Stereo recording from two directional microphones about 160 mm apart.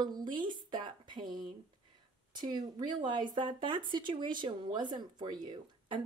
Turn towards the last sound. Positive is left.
turn(degrees=-30)  # may be behind; listen again after turning